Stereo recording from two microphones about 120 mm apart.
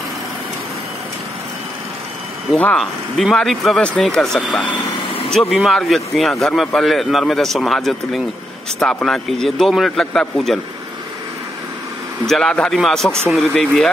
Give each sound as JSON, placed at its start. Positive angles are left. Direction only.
{"t": 2.5, "sound": "a man's voice", "side_deg": 5}
{"t": 12.3, "sound": "a man's voice", "side_deg": 5}